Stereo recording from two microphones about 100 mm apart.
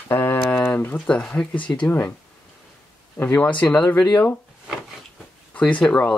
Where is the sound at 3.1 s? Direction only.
20° left (ahead or behind).